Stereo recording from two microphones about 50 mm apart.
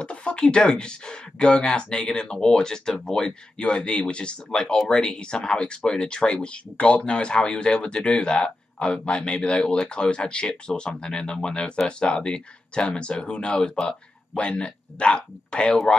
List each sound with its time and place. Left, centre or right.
0.0 s speech: left